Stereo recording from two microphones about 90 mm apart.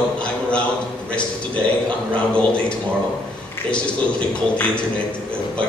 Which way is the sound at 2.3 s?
10° left (ahead or behind).